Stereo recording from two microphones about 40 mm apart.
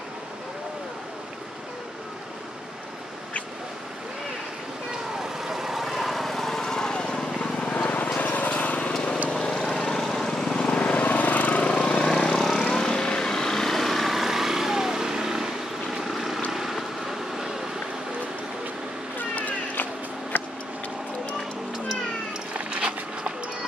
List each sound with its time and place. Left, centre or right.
5.2 s vehicle: centre
7.3 s vehicle: left
8.2 s lawn mower: left
9.3 s vehicle: centre
10.9 s lawn mower: left
11.7 s vehicle: left; by 17.6 s centre
19.1 s cat: left
20.3 s a sound: left
22.5 s a sound: right